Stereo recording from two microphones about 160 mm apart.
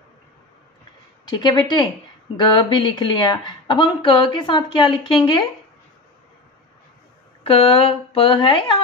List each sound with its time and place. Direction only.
1.2 s speech: 30° left (ahead or behind)
7.4 s speech: 35° left (ahead or behind)